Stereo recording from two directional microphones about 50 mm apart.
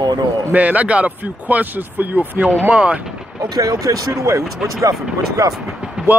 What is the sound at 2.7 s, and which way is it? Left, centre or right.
Speech, right.